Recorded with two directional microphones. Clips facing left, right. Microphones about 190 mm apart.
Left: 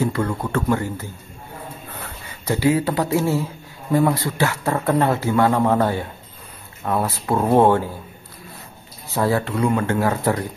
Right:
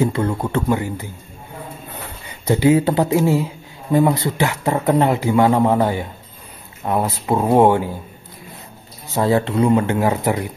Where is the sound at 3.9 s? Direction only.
20° right (ahead or behind).